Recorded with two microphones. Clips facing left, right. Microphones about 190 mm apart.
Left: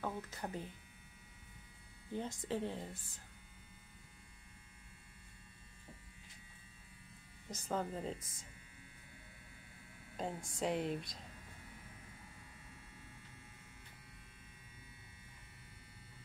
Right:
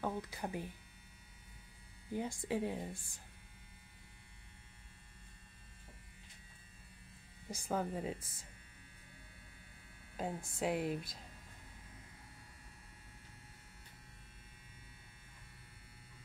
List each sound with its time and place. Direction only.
0.0 s speech: 10° right (ahead or behind)
2.1 s speech: 10° right (ahead or behind)
7.4 s speech: 10° right (ahead or behind)
10.1 s speech: 5° right (ahead or behind)